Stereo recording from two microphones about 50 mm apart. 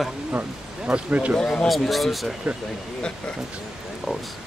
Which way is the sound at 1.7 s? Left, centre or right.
Centre.